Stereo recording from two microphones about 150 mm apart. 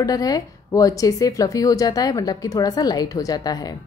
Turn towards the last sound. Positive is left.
turn(degrees=25)  # may be behind; listen again after turning